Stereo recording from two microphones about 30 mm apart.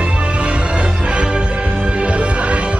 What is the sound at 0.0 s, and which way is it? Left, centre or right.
Music, right.